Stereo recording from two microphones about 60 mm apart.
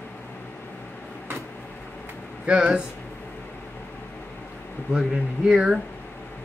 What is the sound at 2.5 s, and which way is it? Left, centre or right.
Speech, centre.